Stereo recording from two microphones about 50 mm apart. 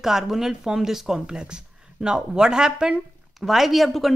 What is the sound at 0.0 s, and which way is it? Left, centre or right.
Speech, centre.